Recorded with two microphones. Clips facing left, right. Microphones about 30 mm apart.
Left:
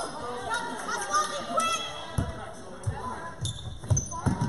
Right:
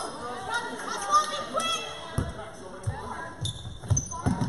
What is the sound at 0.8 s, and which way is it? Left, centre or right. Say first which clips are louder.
Chatter: right 4 dB; centre.